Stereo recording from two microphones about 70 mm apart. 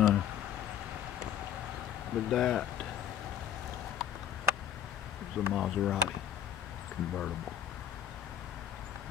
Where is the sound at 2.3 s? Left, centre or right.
Centre.